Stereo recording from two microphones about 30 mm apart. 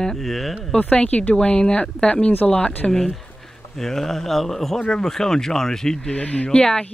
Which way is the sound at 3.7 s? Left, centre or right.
Centre.